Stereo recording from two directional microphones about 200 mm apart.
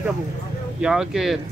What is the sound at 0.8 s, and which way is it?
Speech, 5° right (ahead or behind).